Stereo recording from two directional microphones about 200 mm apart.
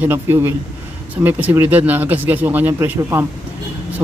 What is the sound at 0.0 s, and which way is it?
A man's voice, 10° right (ahead or behind).